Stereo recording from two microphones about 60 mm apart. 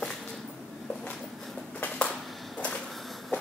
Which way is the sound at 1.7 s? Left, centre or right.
Left.